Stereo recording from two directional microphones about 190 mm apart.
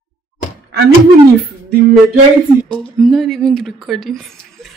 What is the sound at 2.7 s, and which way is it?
A woman's voice, centre (ahead or behind).